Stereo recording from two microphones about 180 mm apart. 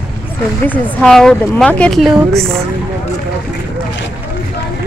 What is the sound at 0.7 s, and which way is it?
Speech, 5° left (ahead or behind).